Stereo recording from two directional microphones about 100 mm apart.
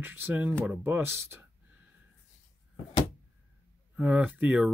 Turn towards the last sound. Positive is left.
turn(degrees=-15)  # may be behind; listen again after turning